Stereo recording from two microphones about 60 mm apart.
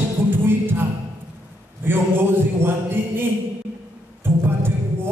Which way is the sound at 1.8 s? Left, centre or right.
Right.